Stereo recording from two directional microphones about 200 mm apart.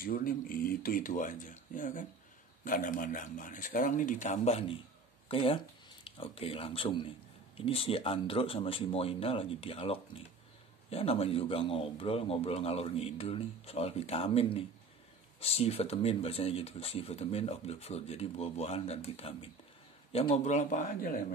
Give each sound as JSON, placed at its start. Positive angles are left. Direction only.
{"t": 0.0, "sound": "speech", "side_deg": 45}